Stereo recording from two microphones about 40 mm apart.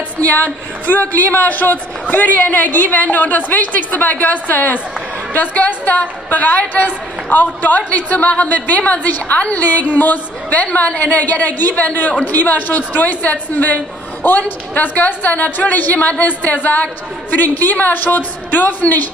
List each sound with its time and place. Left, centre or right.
0.2 s a woman's voice: left